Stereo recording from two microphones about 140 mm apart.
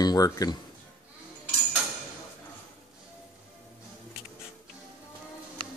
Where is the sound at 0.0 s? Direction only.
25° left (ahead or behind).